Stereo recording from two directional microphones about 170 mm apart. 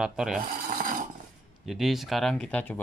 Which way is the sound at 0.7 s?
55° right (ahead or behind).